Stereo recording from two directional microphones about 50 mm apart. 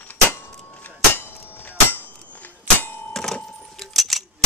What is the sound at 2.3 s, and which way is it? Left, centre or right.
Clang, left.